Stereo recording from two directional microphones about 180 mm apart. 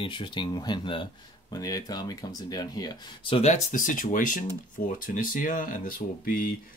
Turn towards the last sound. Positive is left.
turn(degrees=50)  # may be behind; listen again after turning